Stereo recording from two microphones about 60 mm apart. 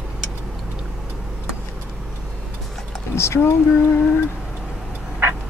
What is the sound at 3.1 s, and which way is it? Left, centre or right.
Speech, left.